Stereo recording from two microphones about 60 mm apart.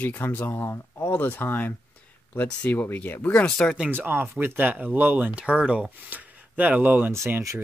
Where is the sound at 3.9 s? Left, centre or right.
Right.